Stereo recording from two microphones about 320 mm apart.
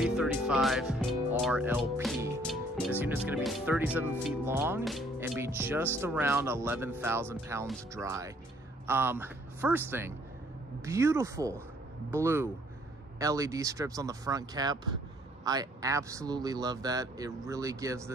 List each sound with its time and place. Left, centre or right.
0.0 s a man's voice: centre